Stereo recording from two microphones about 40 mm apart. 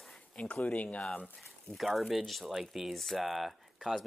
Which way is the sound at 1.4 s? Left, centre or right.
Centre.